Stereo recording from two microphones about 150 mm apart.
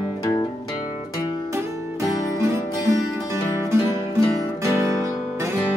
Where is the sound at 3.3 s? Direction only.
20° right (ahead or behind).